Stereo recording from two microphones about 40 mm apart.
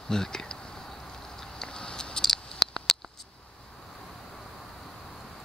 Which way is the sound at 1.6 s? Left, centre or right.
Centre.